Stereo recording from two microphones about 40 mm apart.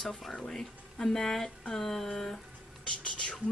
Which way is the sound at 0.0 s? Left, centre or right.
Centre.